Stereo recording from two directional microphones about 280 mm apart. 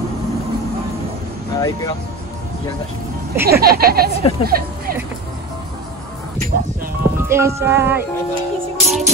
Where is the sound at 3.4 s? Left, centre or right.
Right.